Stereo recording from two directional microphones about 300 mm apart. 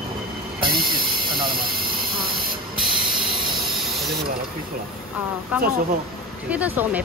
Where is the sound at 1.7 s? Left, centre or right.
Right.